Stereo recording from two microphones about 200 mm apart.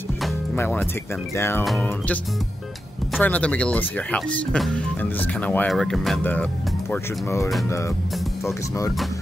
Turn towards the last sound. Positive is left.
turn(degrees=15)  # may be behind; listen again after turning